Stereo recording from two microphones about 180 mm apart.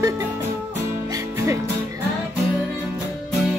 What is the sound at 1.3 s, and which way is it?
Music, 15° right (ahead or behind).